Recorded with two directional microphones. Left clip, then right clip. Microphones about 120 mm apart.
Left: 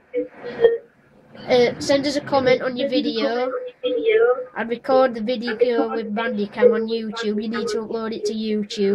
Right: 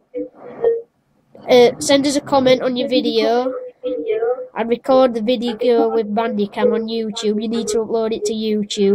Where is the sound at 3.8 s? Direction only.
25° left (ahead or behind).